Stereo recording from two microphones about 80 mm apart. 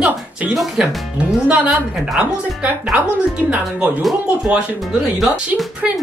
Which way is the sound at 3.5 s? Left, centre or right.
Centre.